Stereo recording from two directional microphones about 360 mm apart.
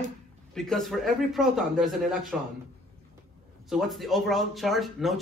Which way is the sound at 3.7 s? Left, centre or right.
Centre.